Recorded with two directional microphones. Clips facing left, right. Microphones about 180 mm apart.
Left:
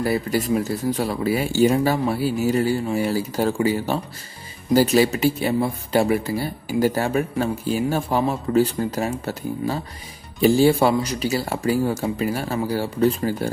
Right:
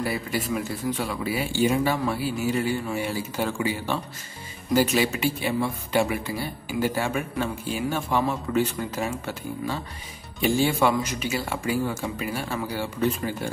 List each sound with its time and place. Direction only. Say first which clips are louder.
0.0 s speech: left 6 dB; 40° left (ahead or behind)